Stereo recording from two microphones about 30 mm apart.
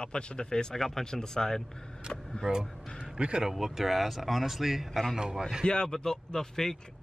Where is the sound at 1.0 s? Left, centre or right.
Left.